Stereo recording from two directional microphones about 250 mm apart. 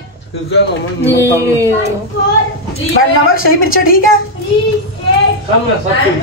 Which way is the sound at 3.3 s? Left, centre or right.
Left.